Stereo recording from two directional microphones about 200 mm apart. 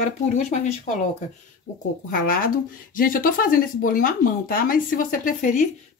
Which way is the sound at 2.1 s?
45° left (ahead or behind).